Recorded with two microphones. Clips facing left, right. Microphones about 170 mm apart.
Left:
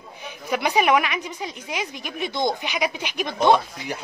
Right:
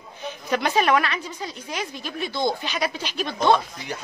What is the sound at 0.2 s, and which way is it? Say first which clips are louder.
A woman's voice: even; 10° left (ahead or behind).